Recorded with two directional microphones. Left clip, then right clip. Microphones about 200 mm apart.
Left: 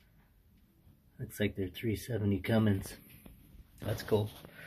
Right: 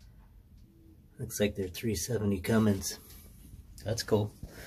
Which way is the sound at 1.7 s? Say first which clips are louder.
Right 3 dB; 25° left (ahead or behind).